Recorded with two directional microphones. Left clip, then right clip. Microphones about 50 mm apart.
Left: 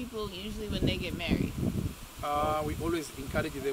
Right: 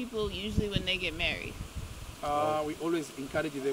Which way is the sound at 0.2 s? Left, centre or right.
Right.